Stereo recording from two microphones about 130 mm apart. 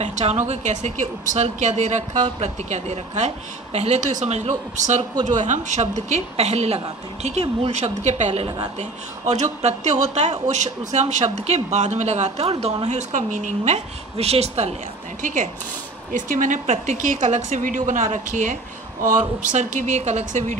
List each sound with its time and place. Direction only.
0.0 s speech: 55° right (ahead or behind)
12.8 s a woman's voice: 65° right (ahead or behind)
14.1 s a woman's voice: 50° right (ahead or behind)
15.2 s a woman's voice: 75° right (ahead or behind)